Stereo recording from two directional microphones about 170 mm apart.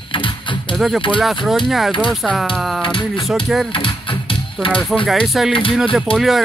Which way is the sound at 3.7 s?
30° left (ahead or behind).